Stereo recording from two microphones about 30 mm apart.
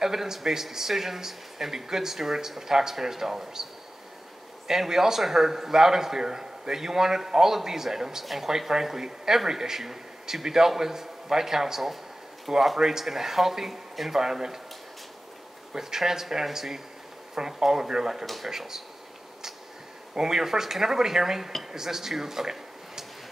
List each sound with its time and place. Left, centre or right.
0.0 s a man's voice: centre
4.6 s a man's voice: centre
15.7 s a man's voice: centre
18.2 s speech: centre
20.2 s a man's voice: centre